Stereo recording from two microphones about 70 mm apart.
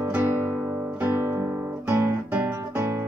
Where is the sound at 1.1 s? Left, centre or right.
Right.